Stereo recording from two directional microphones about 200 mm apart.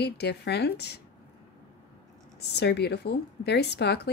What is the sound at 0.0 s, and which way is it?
Speech, 55° left (ahead or behind).